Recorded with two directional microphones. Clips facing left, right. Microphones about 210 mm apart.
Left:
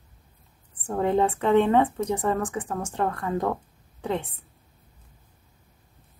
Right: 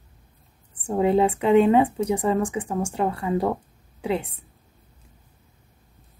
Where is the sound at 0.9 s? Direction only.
10° right (ahead or behind).